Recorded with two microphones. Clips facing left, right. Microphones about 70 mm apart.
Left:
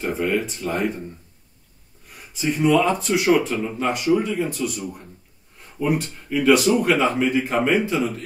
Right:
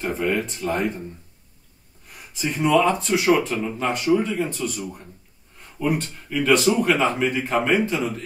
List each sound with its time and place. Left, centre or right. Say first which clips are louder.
0.0 s a man's voice: left 1 dB; centre
2.1 s a man's voice: left 3 dB; centre